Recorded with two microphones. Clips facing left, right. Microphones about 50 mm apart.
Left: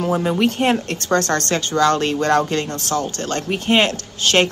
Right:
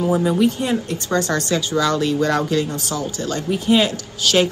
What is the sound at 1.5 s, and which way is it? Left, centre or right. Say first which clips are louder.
Speech: left 3 dB; left.